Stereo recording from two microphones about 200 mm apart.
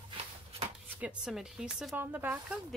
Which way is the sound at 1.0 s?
5° right (ahead or behind).